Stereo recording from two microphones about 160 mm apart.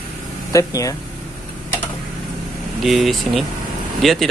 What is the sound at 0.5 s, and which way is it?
Speech, 20° left (ahead or behind).